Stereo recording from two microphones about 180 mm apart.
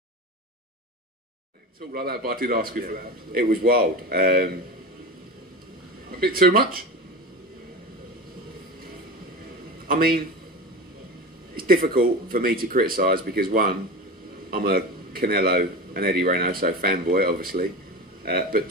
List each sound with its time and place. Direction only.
1.9 s a man's voice: 55° right (ahead or behind)
6.1 s a man's voice: 55° right (ahead or behind)
9.8 s a man's voice: 55° right (ahead or behind)
11.5 s a man's voice: 55° right (ahead or behind)